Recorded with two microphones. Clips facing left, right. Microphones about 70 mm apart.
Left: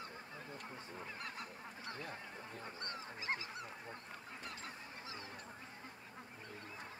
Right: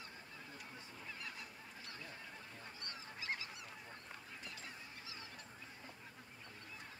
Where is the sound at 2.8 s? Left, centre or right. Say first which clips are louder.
Left 3 dB; left.